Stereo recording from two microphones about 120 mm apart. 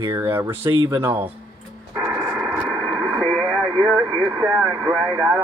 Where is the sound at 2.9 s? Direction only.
35° right (ahead or behind).